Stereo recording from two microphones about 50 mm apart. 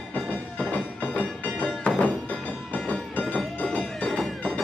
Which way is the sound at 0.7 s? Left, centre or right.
Left.